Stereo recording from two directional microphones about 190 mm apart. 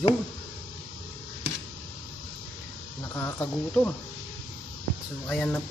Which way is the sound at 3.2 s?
10° left (ahead or behind).